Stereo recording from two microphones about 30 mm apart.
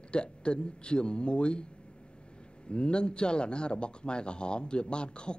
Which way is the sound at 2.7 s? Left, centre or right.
Left.